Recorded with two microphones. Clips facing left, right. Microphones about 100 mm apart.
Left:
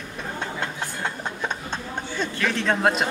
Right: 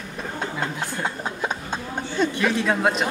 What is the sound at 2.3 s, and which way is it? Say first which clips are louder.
Speech: right 2 dB; 10° right (ahead or behind).